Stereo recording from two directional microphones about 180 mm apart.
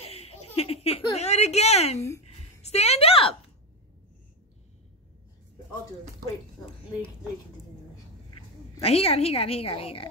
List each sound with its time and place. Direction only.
0.0 s a sound: 35° left (ahead or behind)
2.0 s speech: 15° left (ahead or behind)
2.2 s a woman's voice: 35° left (ahead or behind)
8.8 s a woman's voice: 35° left (ahead or behind)